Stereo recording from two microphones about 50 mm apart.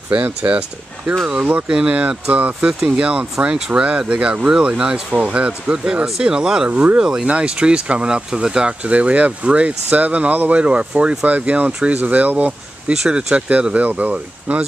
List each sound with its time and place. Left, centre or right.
0.1 s speech: right
1.7 s speech: centre
2.3 s speech: right; by 6.7 s centre
6.7 s speech: right
7.0 s speech: centre; by 12.9 s right
12.9 s speech: centre
13.5 s speech: right